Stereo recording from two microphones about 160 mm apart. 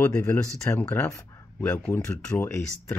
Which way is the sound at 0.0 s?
15° left (ahead or behind).